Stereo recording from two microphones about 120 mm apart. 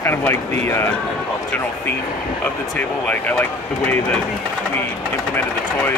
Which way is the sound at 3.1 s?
15° left (ahead or behind).